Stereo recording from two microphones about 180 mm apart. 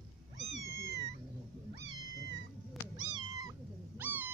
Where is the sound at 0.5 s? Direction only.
65° right (ahead or behind).